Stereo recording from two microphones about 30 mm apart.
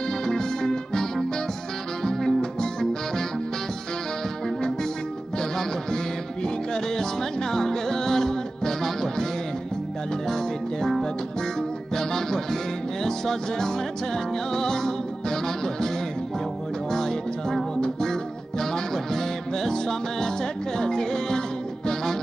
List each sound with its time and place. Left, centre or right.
0.3 s music: left
5.4 s music: centre
11.9 s music: centre
16.9 s music: centre
17.7 s music: left
19.1 s music: centre